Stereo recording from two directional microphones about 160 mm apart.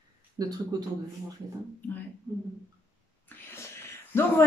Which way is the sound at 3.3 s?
10° left (ahead or behind).